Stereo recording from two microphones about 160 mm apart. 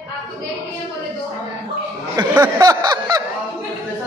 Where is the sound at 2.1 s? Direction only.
20° right (ahead or behind).